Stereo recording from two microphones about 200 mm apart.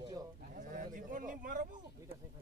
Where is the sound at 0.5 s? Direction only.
40° right (ahead or behind).